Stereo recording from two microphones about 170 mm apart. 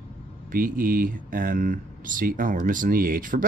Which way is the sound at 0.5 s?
55° right (ahead or behind).